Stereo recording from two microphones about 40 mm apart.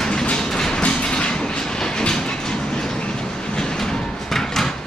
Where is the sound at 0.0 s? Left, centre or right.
Left.